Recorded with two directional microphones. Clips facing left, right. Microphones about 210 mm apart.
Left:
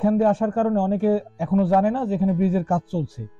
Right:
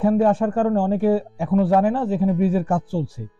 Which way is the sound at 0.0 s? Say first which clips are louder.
Right 1 dB; 10° right (ahead or behind).